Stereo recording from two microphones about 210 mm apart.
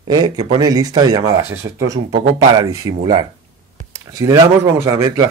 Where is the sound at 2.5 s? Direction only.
15° right (ahead or behind).